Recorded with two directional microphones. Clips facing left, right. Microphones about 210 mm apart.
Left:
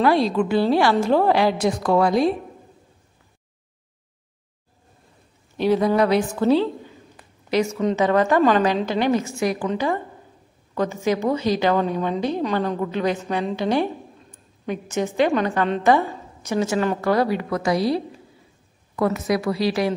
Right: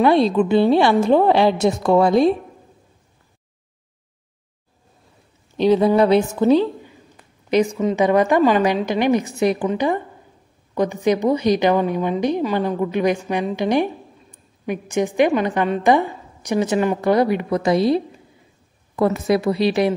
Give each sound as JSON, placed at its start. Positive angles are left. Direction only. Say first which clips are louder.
{"t": 0.0, "sound": "a woman's voice", "louder": "right 3 dB", "side_deg": -25}
{"t": 5.6, "sound": "a woman's voice", "louder": "right 4 dB", "side_deg": -25}